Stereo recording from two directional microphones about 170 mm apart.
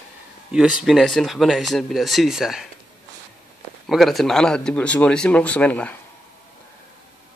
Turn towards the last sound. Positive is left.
turn(degrees=10)  # may be behind; listen again after turning